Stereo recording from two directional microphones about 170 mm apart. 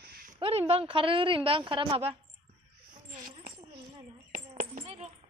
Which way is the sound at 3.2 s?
50° right (ahead or behind).